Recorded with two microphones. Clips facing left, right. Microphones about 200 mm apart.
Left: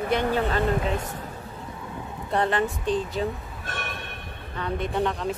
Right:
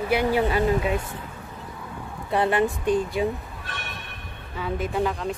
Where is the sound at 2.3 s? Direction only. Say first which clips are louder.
Right 2 dB; 10° right (ahead or behind).